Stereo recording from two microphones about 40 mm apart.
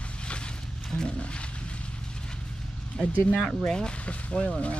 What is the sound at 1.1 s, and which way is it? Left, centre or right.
Roaring cats, left.